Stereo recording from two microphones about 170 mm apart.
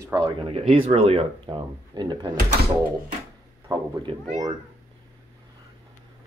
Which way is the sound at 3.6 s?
25° right (ahead or behind).